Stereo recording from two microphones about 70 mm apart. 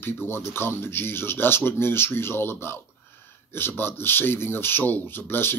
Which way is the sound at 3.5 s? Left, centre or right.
Left.